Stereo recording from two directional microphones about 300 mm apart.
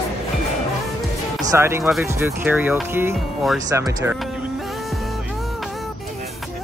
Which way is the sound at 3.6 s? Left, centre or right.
Centre.